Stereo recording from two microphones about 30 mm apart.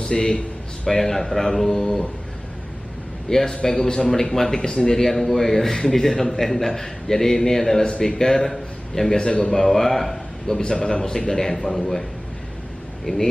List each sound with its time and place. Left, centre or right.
0.0 s a man's voice: left
0.8 s a man's voice: centre
3.3 s a man's voice: centre
4.6 s a man's voice: left
4.9 s a man's voice: centre
10.5 s a man's voice: left
11.5 s a man's voice: centre
13.0 s speech: centre